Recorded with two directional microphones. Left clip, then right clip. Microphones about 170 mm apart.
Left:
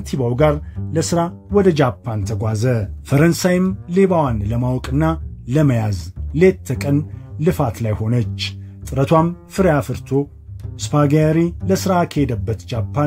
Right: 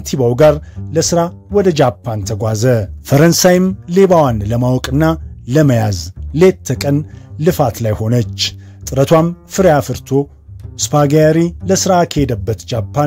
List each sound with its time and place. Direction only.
0.0 s speech: 45° right (ahead or behind)
0.9 s speech: 35° right (ahead or behind)